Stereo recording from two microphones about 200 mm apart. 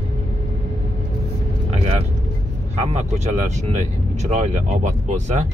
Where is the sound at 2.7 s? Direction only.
30° right (ahead or behind).